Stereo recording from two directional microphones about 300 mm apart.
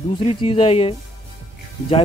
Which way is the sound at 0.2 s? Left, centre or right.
Centre.